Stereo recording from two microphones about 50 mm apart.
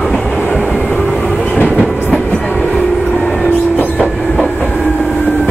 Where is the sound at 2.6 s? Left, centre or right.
Centre.